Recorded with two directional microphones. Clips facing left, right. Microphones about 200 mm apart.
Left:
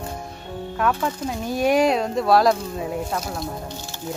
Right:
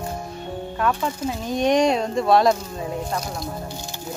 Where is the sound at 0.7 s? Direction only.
Centre (ahead or behind).